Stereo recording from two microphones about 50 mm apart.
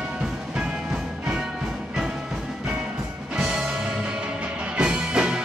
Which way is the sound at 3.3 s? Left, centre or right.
Centre.